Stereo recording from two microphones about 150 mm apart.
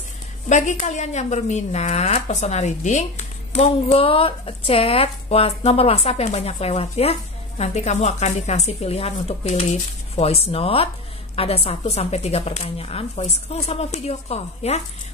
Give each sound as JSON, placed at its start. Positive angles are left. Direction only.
{"t": 0.5, "sound": "speech", "side_deg": 55}